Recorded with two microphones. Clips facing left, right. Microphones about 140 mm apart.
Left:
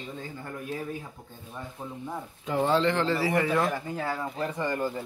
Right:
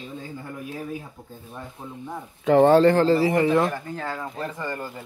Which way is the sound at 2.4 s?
70° right (ahead or behind).